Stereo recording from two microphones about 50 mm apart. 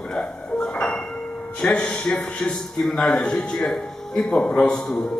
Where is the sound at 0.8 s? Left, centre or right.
Centre.